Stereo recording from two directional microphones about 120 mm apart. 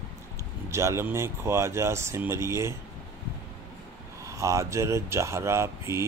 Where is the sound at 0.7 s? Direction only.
25° right (ahead or behind).